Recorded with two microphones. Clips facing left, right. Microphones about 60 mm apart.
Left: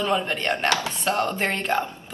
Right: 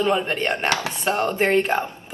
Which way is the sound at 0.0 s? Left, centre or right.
Centre.